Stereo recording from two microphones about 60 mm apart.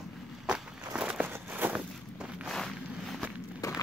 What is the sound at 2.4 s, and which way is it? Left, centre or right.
Walk, centre.